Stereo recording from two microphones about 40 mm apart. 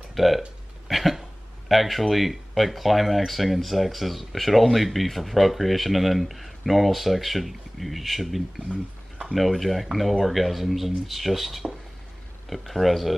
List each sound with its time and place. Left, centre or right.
0.1 s speech: centre
0.8 s cough: centre
1.7 s speech: centre